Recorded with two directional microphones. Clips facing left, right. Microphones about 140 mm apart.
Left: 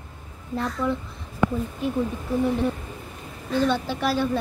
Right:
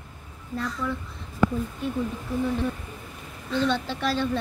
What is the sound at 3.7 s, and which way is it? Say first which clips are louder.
Speech: left 2 dB; 10° left (ahead or behind).